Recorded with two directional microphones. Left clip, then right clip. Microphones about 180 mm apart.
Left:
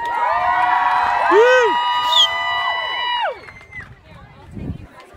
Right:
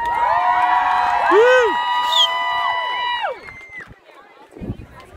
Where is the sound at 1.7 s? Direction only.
50° left (ahead or behind).